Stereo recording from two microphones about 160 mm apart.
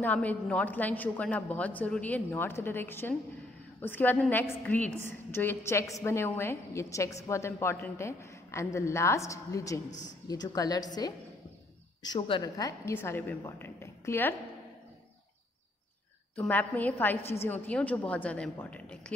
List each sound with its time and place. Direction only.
0.0 s a woman's voice: 10° left (ahead or behind)
9.8 s speech: 50° left (ahead or behind)
10.2 s a woman's voice: 25° left (ahead or behind)
12.0 s a woman's voice: 30° left (ahead or behind)
16.3 s a woman's voice: 10° left (ahead or behind)